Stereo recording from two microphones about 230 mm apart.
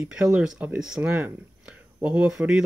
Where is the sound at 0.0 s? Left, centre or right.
Centre.